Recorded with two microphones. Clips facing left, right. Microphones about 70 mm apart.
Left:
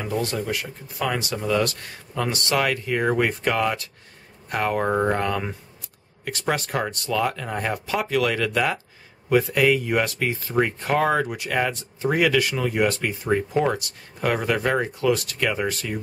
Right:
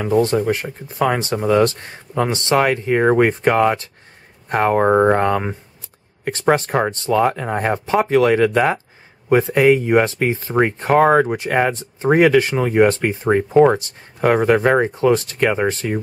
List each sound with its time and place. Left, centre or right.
0.0 s speech: right